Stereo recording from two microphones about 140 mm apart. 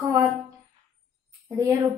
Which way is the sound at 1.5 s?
20° right (ahead or behind).